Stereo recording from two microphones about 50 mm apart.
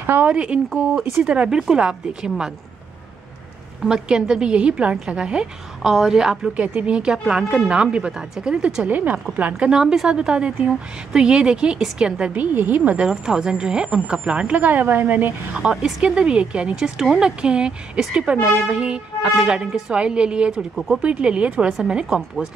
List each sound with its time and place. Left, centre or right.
0.0 s a sound: right
0.3 s speech: right
3.8 s speech: centre
5.8 s speech: centre
6.4 s speech: right
8.8 s speech: right
9.6 s speech: centre
12.4 s speech: right
13.1 s speech: centre
14.6 s speech: right
15.7 s speech: centre
20.7 s speech: centre
21.0 s speech: right